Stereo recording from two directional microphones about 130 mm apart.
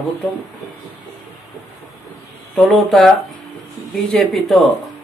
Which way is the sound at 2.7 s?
Centre (ahead or behind).